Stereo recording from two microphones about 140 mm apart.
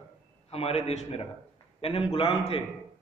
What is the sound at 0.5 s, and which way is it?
A man's voice, 45° left (ahead or behind).